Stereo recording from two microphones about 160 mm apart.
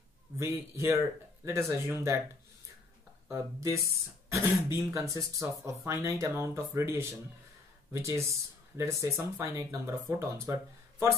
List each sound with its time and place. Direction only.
0.4 s speech: 15° right (ahead or behind)
3.3 s speech: 15° right (ahead or behind)